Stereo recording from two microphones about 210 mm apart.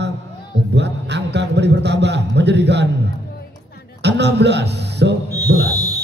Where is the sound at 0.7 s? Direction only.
55° right (ahead or behind).